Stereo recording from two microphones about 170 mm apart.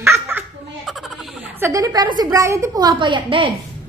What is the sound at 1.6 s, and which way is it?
A woman's voice, 20° right (ahead or behind).